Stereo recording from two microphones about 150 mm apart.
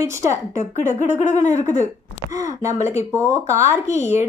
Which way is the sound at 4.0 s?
15° right (ahead or behind).